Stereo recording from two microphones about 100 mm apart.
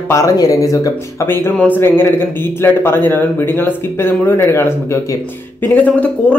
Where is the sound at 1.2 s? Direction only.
25° left (ahead or behind).